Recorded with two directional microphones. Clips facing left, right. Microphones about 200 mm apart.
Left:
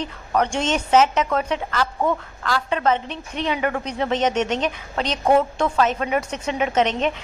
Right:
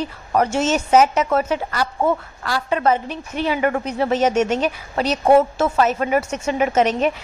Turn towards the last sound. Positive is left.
turn(degrees=-5)  # may be behind; listen again after turning